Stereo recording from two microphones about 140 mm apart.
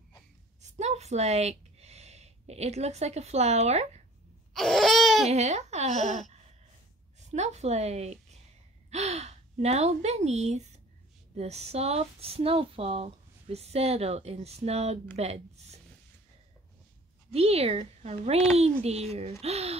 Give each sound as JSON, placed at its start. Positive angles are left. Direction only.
{"t": 0.6, "sound": "a sound", "side_deg": -55}
{"t": 4.6, "sound": "laughter", "side_deg": 0}
{"t": 5.3, "sound": "speech", "side_deg": -55}
{"t": 17.3, "sound": "speech", "side_deg": -45}